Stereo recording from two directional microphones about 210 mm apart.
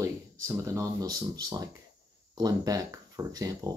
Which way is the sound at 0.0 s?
15° right (ahead or behind).